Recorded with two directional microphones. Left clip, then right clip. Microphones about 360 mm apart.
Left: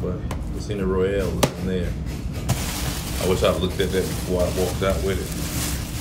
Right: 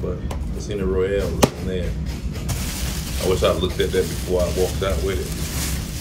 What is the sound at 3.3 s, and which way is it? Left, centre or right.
Speech, centre.